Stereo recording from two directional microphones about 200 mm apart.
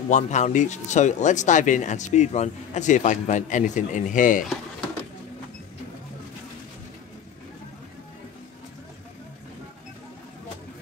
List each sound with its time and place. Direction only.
0.1 s speech: 35° left (ahead or behind)